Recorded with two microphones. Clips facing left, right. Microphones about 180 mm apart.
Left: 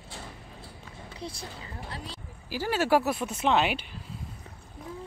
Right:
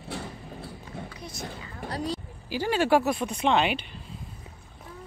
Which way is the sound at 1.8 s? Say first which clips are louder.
Right 11 dB; 40° right (ahead or behind).